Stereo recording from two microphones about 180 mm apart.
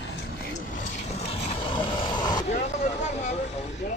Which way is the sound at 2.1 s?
25° left (ahead or behind).